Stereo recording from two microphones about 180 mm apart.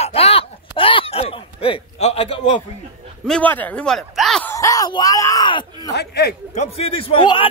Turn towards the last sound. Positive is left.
turn(degrees=30)  # may be behind; listen again after turning